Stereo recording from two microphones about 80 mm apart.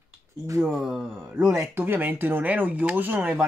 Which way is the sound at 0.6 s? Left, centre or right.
Centre.